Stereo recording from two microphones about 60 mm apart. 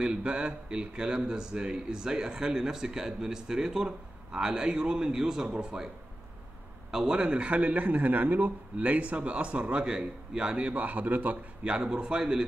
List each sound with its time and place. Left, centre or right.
0.0 s speech: centre
6.9 s a man's voice: centre; by 11.3 s right
11.6 s speech: centre